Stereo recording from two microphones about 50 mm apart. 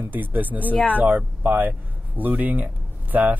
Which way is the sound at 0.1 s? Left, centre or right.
Right.